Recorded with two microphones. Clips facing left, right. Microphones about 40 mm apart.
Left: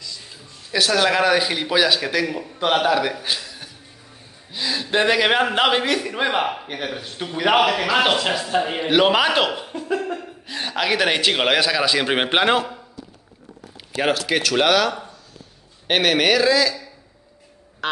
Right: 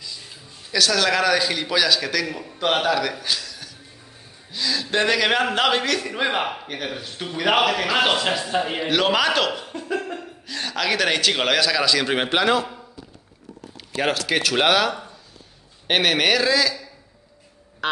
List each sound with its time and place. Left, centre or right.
0.7 s a man's voice: centre
2.3 s a man's voice: centre
3.0 s a sound: centre
4.5 s a man's voice: centre
8.8 s a man's voice: centre
10.4 s a man's voice: centre
13.9 s a man's voice: centre
14.4 s a man's voice: centre